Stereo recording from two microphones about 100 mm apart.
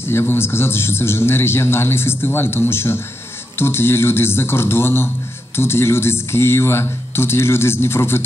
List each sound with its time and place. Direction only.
0.1 s a man's voice: 25° left (ahead or behind)